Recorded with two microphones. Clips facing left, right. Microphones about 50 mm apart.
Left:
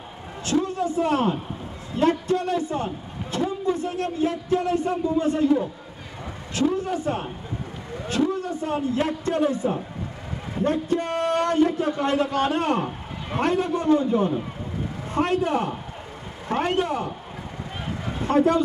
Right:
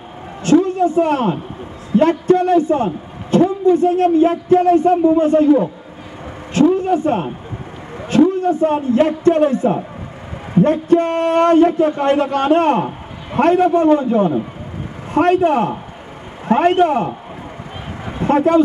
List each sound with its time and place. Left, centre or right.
0.4 s a man's voice: right
6.5 s a sound: right
8.1 s a man's voice: right
18.2 s a man's voice: right